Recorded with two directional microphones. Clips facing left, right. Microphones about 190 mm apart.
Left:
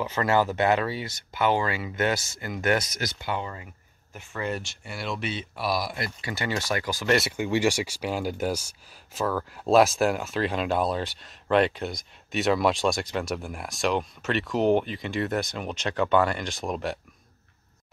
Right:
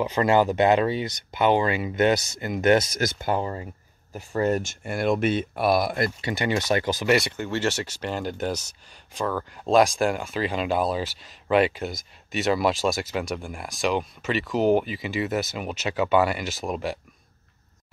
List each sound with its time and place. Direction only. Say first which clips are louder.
0.0 s speech: right 4 dB; 15° right (ahead or behind)
3.0 s speech: right 6 dB; 45° right (ahead or behind)
6.2 s speech: right 1 dB; 20° right (ahead or behind)
7.2 s speech: left 1 dB; 10° left (ahead or behind)